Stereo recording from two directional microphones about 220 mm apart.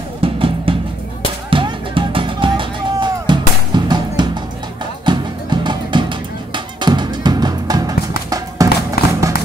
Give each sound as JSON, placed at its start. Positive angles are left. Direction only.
{"t": 0.2, "sound": "music", "side_deg": -25}
{"t": 9.0, "sound": "music", "side_deg": 45}